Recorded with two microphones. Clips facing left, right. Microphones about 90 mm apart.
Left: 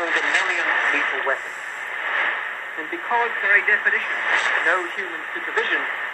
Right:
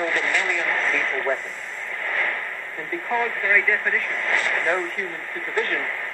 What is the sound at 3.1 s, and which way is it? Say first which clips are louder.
Speech: left 3 dB; 40° left (ahead or behind).